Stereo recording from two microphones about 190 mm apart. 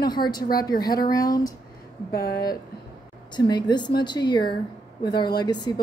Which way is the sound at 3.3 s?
20° left (ahead or behind).